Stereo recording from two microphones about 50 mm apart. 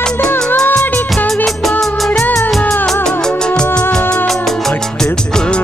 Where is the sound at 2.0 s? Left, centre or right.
Centre.